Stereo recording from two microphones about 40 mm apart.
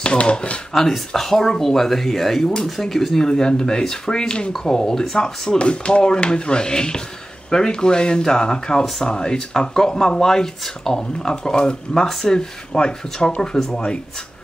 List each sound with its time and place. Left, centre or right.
0.0 s speech: left
0.7 s speech: centre